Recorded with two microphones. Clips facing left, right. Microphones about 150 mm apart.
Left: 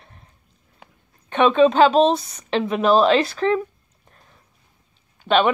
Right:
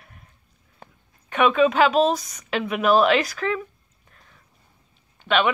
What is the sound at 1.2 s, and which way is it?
Speech, 30° left (ahead or behind).